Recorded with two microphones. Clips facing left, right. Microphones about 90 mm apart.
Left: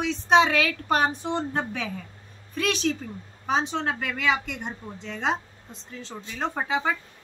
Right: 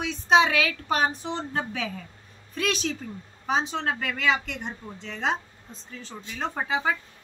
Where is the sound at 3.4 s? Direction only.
Centre (ahead or behind).